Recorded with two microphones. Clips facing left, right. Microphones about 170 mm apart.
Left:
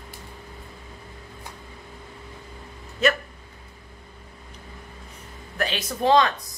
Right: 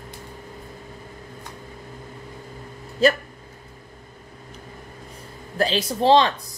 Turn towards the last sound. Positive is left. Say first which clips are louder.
# right 3 dB
turn(degrees=-30)  # may be behind; listen again after turning